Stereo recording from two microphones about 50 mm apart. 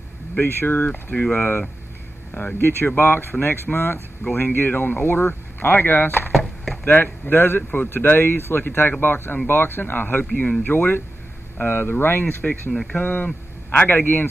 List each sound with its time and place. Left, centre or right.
0.4 s speech: left
2.3 s speech: left
6.3 s chop: centre
6.9 s a man's voice: left